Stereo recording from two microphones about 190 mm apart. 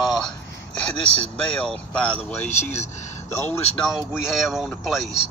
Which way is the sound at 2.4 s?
35° left (ahead or behind).